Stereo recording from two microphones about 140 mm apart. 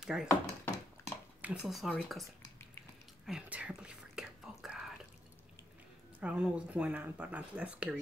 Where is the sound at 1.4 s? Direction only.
10° right (ahead or behind).